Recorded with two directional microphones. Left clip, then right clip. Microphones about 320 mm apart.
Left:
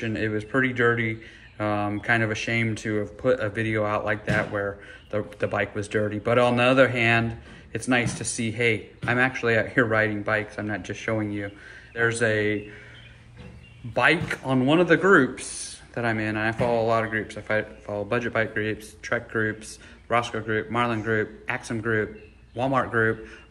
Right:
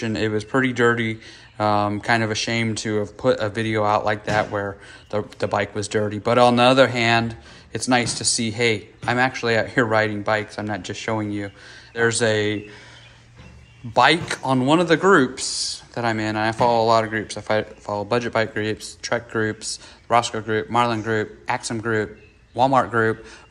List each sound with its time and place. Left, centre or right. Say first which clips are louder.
0.0 s speech: right 4 dB; centre
13.9 s speech: right 5 dB; centre